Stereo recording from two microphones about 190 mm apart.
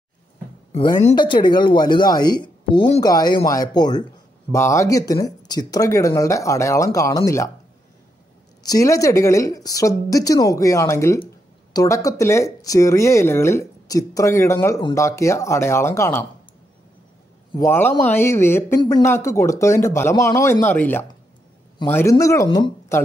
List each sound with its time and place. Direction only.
1.1 s speech: 25° left (ahead or behind)
8.6 s speech: 15° left (ahead or behind)
17.5 s speech: 15° left (ahead or behind)